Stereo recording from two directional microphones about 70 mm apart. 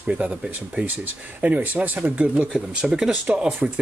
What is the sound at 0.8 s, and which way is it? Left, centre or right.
Speech, right.